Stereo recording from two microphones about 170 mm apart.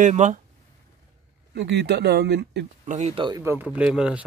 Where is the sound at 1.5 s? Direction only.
90° right.